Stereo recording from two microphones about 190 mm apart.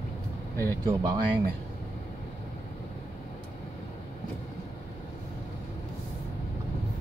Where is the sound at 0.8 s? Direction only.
20° right (ahead or behind).